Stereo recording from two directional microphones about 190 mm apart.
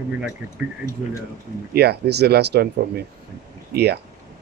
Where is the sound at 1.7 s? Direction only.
60° right (ahead or behind).